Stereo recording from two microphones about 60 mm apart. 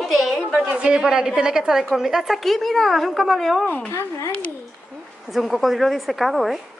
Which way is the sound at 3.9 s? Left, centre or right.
Left.